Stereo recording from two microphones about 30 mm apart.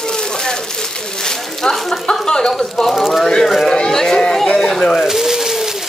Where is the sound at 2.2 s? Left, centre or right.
Left.